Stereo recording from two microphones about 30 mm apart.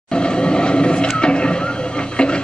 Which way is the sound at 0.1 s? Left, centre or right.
Left.